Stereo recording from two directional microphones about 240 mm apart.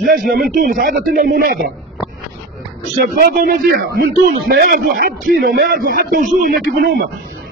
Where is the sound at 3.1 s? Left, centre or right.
Right.